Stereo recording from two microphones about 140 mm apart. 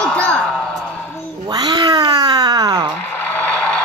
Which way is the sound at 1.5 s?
30° right (ahead or behind).